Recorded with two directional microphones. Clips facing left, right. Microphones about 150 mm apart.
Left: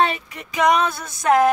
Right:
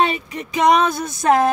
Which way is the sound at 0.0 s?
20° right (ahead or behind).